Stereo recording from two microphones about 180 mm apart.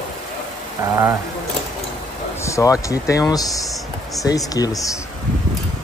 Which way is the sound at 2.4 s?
15° left (ahead or behind).